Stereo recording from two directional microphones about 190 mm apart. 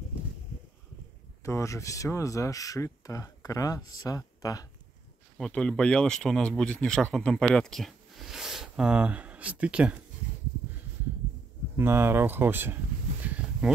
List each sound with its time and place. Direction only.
1.4 s speech: 15° left (ahead or behind)
5.4 s speech: 5° left (ahead or behind)
11.7 s speech: 10° right (ahead or behind)
13.2 s a sound: 5° right (ahead or behind)